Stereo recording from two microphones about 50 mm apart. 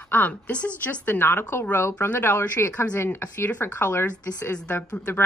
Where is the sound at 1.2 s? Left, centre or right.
Left.